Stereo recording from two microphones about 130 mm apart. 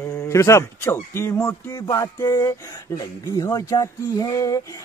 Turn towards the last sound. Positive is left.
turn(degrees=25)  # may be behind; listen again after turning